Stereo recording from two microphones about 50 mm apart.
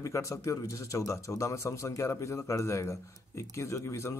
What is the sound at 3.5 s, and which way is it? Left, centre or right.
Speech, left.